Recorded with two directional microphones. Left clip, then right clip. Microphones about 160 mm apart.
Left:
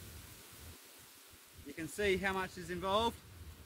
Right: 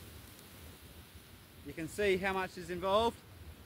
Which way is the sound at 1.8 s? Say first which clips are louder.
Right 2 dB; 20° left (ahead or behind).